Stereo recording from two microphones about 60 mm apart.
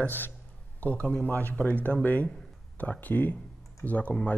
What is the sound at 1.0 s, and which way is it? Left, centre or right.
Speech, centre.